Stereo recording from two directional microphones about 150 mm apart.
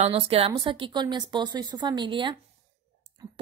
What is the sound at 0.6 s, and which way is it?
A woman's voice, 35° right (ahead or behind).